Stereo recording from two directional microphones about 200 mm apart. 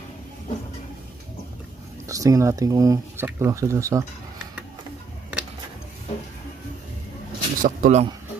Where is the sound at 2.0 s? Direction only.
15° right (ahead or behind).